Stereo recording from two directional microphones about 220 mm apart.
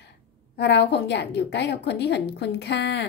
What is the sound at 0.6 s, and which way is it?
A woman's voice, 50° left (ahead or behind).